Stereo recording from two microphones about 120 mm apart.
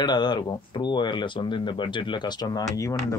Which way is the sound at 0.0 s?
35° left (ahead or behind).